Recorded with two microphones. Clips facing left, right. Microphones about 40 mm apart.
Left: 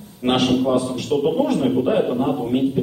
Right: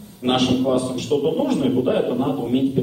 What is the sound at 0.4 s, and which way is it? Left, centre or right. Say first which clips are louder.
Speech: left 1 dB; left.